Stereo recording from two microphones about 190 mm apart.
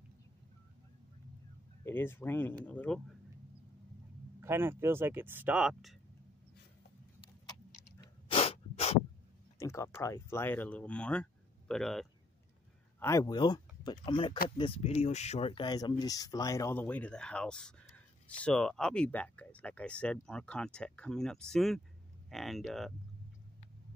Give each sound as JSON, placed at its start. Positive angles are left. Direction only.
{"t": 1.9, "sound": "speech", "side_deg": 10}
{"t": 4.4, "sound": "speech", "side_deg": -10}
{"t": 8.0, "sound": "sneeze", "side_deg": 30}
{"t": 9.6, "sound": "speech", "side_deg": 15}
{"t": 13.0, "sound": "speech", "side_deg": 20}